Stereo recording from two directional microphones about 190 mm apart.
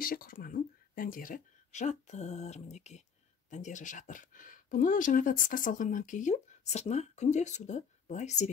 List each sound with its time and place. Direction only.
0.0 s speech: 50° left (ahead or behind)